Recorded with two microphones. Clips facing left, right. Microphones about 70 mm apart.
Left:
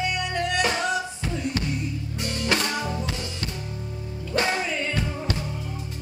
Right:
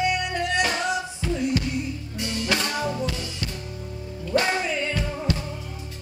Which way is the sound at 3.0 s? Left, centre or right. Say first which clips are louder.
Right 2 dB; left.